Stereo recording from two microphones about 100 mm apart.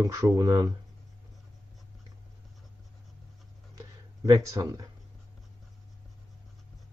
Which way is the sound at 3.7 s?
35° right (ahead or behind).